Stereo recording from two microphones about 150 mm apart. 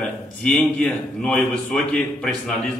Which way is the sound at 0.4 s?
10° left (ahead or behind).